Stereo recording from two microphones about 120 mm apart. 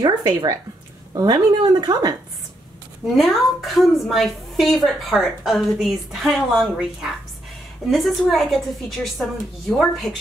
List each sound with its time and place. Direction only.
0.0 s a woman's voice: 35° right (ahead or behind)
3.2 s a woman's voice: centre (ahead or behind)